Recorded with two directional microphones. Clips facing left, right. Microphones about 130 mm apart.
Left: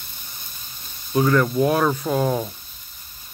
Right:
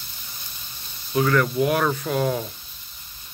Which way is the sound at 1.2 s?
15° left (ahead or behind).